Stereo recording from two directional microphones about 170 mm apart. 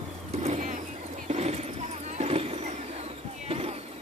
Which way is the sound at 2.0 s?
40° right (ahead or behind).